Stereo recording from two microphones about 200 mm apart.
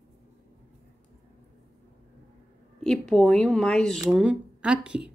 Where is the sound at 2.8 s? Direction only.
5° left (ahead or behind).